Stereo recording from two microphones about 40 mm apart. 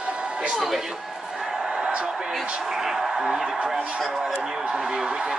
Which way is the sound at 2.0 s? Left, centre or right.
Centre.